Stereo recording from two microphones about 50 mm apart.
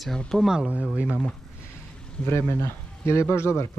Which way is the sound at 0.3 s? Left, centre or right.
Centre.